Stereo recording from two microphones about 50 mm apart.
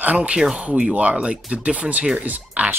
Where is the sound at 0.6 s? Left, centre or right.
Right.